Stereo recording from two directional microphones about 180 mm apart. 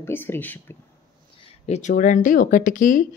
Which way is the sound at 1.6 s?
40° left (ahead or behind).